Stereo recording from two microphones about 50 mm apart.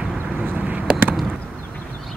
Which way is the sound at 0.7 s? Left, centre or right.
Right.